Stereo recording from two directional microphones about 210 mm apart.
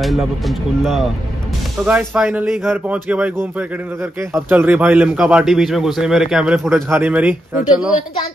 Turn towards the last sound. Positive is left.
turn(degrees=-5)  # may be behind; listen again after turning